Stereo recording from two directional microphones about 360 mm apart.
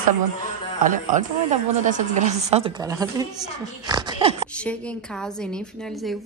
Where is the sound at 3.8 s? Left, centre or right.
Centre.